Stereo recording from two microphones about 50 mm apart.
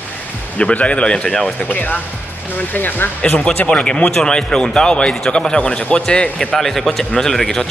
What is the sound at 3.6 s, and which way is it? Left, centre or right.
A man's voice, left.